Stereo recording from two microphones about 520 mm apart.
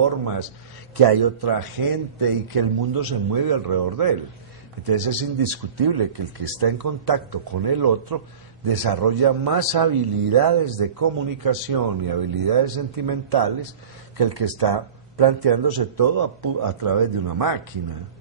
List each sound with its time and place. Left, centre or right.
0.9 s a man's voice: right